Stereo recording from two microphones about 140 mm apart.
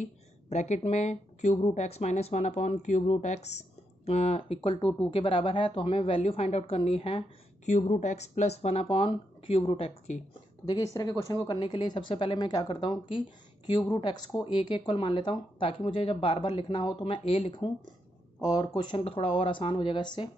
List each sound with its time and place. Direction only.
0.0 s speech: 55° left (ahead or behind)
7.7 s speech: 55° left (ahead or behind)
10.6 s speech: 25° left (ahead or behind)